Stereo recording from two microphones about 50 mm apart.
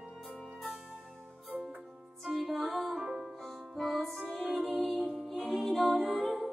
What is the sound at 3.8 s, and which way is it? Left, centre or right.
Music, centre.